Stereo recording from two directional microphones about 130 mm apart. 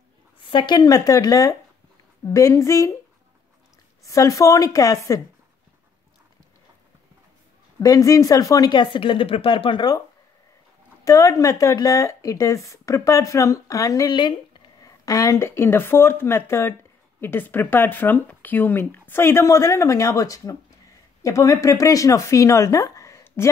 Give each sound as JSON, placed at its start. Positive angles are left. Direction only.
{"t": 0.4, "sound": "speech", "side_deg": 40}
{"t": 4.0, "sound": "speech", "side_deg": 25}
{"t": 7.8, "sound": "speech", "side_deg": 25}
{"t": 11.1, "sound": "speech", "side_deg": 25}